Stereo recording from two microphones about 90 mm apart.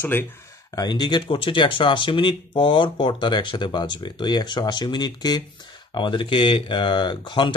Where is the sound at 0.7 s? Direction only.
55° left (ahead or behind).